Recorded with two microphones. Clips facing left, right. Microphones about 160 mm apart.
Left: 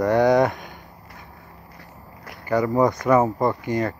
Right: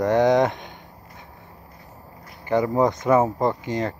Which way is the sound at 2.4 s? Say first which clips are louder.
Left 1 dB; 20° right (ahead or behind).